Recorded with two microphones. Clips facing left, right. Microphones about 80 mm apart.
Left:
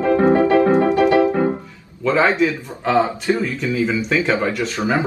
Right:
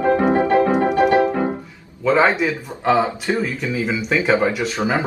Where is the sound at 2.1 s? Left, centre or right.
Centre.